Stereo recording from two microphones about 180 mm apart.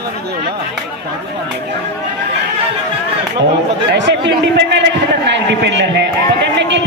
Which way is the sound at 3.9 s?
75° right (ahead or behind).